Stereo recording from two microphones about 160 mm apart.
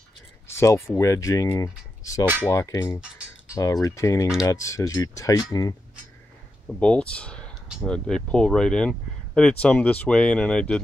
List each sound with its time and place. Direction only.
0.5 s speech: 15° left (ahead or behind)
6.8 s speech: 5° left (ahead or behind)